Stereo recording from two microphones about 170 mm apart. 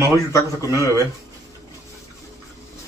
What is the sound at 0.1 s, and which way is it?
Speech, 20° left (ahead or behind).